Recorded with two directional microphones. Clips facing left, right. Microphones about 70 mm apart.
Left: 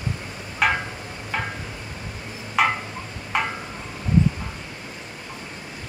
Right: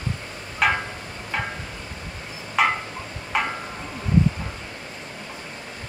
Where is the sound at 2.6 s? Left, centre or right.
Centre.